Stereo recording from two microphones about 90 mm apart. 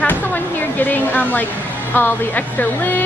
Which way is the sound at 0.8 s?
20° left (ahead or behind).